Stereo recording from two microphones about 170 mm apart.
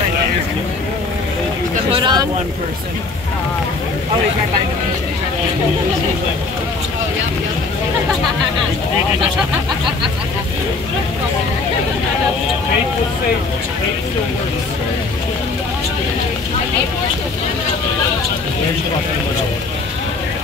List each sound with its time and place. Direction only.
1.9 s vehicle: 30° right (ahead or behind)